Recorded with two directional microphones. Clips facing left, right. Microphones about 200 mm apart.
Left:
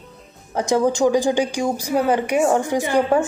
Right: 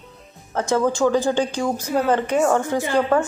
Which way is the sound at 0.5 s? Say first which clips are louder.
Left 2 dB; 15° left (ahead or behind).